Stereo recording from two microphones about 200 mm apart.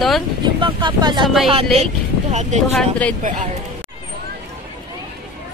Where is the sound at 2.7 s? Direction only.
5° left (ahead or behind).